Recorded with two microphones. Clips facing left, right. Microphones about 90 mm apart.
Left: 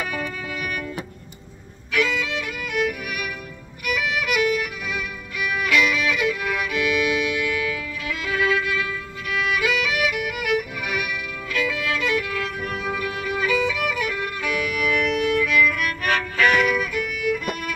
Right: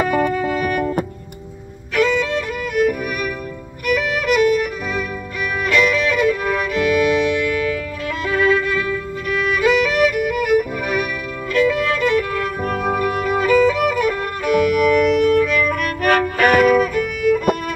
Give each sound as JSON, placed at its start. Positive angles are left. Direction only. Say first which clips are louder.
{"t": 0.0, "sound": "music", "louder": "right 11 dB", "side_deg": -45}
{"t": 2.0, "sound": "violin", "louder": "right 6 dB", "side_deg": -40}
{"t": 5.7, "sound": "music", "louder": "right 5 dB", "side_deg": -40}
{"t": 8.3, "sound": "violin", "louder": "right 5 dB", "side_deg": -40}
{"t": 9.6, "sound": "music", "louder": "right 11 dB", "side_deg": -40}
{"t": 11.5, "sound": "violin", "louder": "right 8 dB", "side_deg": -40}